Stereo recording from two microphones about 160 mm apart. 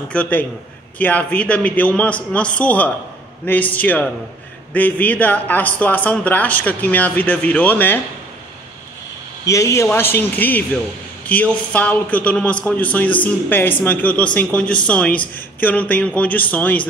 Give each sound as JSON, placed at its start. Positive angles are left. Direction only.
{"t": 0.1, "sound": "a man's voice", "side_deg": 10}
{"t": 9.5, "sound": "a man's voice", "side_deg": 20}